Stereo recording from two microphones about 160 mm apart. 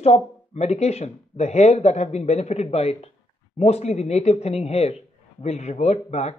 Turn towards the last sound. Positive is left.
turn(degrees=45)  # may be behind; listen again after turning